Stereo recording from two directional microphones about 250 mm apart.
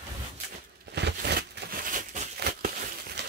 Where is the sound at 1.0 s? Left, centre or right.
Right.